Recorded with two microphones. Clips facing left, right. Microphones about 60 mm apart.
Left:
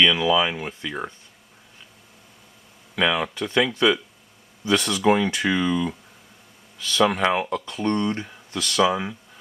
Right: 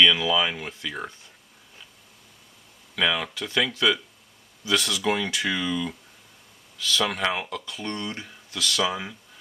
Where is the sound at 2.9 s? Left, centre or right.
Centre.